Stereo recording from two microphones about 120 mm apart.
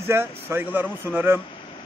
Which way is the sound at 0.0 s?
20° right (ahead or behind).